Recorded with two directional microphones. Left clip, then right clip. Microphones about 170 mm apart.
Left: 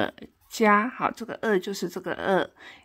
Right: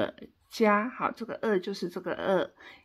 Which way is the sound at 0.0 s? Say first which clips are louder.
Left 3 dB; 25° left (ahead or behind).